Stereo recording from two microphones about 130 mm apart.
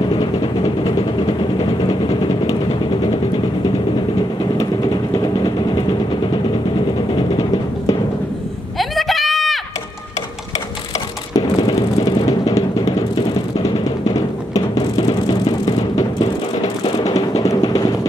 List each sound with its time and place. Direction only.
0.8 s vehicle: 35° left (ahead or behind)
5.1 s vehicle: 30° left (ahead or behind)
7.2 s music: 30° left (ahead or behind)
8.7 s a sound: centre (ahead or behind)
11.3 s music: 30° left (ahead or behind)
14.1 s music: 30° left (ahead or behind)